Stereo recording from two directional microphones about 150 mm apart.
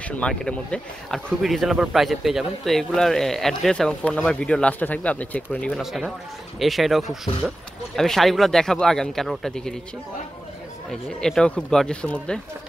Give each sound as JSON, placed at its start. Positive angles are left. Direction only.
{"t": 0.2, "sound": "speech", "side_deg": 5}
{"t": 5.8, "sound": "speech", "side_deg": 0}
{"t": 10.9, "sound": "speech", "side_deg": 5}